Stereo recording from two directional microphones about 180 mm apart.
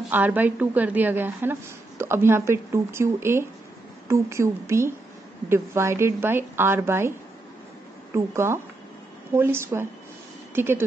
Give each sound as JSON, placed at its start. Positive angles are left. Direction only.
{"t": 0.1, "sound": "a woman's voice", "side_deg": -10}